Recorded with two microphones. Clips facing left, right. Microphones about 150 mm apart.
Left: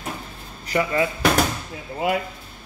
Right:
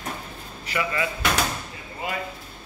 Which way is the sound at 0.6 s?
45° left (ahead or behind).